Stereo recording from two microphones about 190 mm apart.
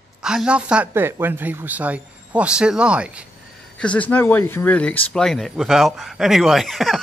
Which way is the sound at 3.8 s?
5° left (ahead or behind).